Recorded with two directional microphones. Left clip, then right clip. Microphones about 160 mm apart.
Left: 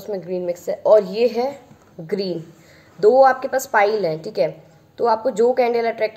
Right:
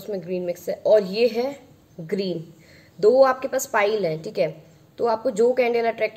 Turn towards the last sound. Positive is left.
turn(degrees=-20)  # may be behind; listen again after turning